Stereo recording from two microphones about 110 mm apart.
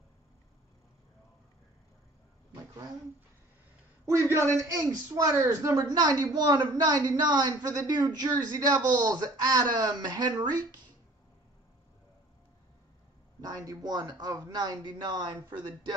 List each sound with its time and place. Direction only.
4.3 s a man's voice: 25° right (ahead or behind)
13.4 s a woman's voice: 35° right (ahead or behind)